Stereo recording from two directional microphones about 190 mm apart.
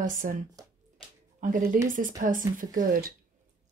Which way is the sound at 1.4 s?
45° right (ahead or behind).